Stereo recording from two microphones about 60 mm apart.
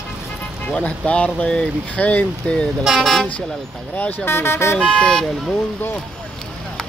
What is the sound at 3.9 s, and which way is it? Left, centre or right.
Speech, left.